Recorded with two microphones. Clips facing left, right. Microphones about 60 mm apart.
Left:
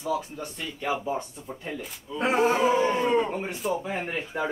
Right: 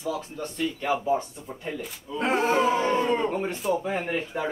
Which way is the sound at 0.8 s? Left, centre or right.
Centre.